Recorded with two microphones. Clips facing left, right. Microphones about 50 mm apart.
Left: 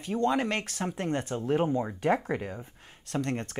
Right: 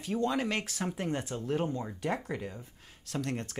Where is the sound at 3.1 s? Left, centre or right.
Centre.